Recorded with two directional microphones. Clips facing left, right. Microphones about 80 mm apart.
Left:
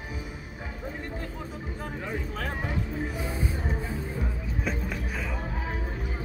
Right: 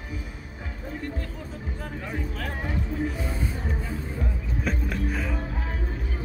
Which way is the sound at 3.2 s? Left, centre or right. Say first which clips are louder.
Even; centre.